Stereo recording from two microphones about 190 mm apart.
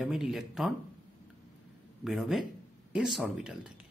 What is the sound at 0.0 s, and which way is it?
Speech, centre (ahead or behind).